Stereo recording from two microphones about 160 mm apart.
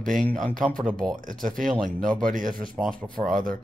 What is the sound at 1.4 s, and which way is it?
Speech, 55° right (ahead or behind).